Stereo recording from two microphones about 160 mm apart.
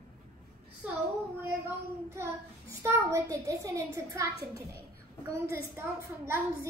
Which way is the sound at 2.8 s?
20° right (ahead or behind).